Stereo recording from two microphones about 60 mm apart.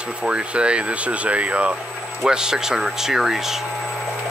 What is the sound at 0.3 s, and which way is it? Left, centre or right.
Speech, centre.